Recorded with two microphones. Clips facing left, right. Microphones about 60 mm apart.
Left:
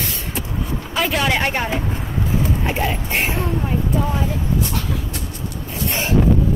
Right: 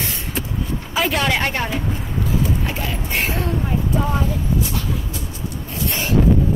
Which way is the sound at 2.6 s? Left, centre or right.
Left.